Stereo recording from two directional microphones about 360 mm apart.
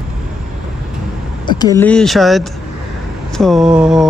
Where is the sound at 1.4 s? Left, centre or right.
Centre.